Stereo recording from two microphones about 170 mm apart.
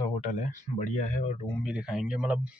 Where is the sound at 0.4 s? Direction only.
45° left (ahead or behind).